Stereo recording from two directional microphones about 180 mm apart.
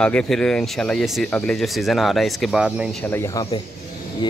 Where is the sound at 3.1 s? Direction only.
15° left (ahead or behind).